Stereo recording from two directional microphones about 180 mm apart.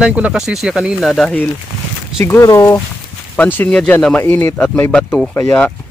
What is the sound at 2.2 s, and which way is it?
Speech, 15° left (ahead or behind).